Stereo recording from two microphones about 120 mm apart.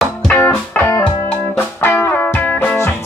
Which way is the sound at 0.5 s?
20° left (ahead or behind).